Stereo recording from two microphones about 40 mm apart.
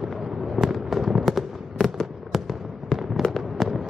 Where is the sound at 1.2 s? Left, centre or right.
Centre.